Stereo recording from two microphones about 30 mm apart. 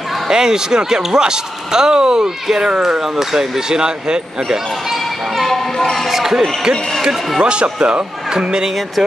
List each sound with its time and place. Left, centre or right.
0.3 s speech: right
3.0 s speech: centre
5.5 s a sound: centre
6.1 s speech: centre
7.4 s speech: right